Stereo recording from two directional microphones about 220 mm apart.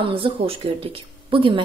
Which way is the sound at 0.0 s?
25° right (ahead or behind).